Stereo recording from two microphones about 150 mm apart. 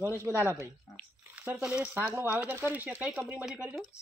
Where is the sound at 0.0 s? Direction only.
15° right (ahead or behind).